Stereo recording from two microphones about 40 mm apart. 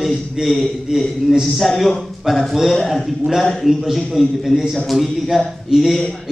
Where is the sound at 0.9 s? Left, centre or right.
Centre.